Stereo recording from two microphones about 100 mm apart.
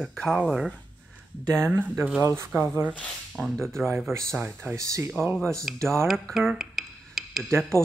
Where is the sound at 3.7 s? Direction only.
25° right (ahead or behind).